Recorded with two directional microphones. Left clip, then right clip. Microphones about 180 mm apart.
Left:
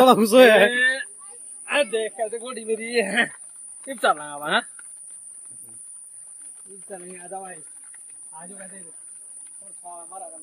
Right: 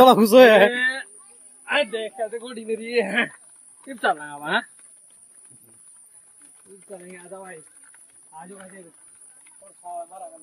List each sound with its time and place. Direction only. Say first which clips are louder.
0.0 s speech: right 2 dB; 25° right (ahead or behind)
0.7 s a sound: left 2 dB; centre (ahead or behind)
1.7 s a man's voice: left 1 dB; centre (ahead or behind)
3.8 s speech: left 2 dB; 10° left (ahead or behind)
7.3 s speech: left 4 dB; 15° right (ahead or behind)